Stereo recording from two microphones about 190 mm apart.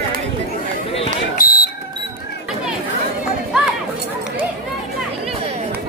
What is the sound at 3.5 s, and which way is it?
Chatter, 5° right (ahead or behind).